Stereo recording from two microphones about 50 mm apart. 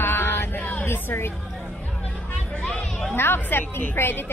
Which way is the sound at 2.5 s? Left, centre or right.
Left.